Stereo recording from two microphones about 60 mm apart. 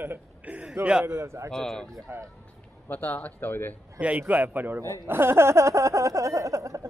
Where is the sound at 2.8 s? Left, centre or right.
Left.